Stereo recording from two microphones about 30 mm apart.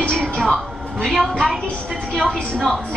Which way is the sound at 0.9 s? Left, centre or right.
Centre.